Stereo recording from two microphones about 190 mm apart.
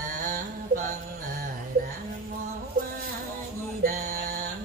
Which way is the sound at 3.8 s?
45° right (ahead or behind).